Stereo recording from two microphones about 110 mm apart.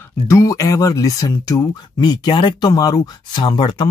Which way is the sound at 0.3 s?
30° left (ahead or behind).